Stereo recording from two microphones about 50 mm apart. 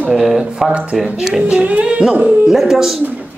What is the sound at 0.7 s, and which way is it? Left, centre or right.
Music, right.